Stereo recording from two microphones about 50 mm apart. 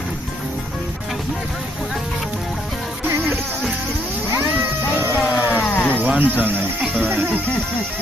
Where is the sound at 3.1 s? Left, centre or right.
Right.